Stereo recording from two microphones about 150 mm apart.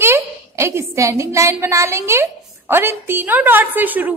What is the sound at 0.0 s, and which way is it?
A woman's voice, 15° right (ahead or behind).